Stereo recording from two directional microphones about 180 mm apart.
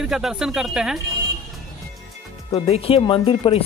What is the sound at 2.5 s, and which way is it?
Speech, 35° left (ahead or behind).